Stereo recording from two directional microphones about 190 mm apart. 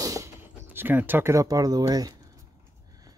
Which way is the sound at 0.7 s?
10° right (ahead or behind).